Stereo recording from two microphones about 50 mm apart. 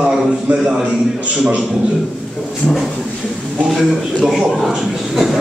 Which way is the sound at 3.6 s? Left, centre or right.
Centre.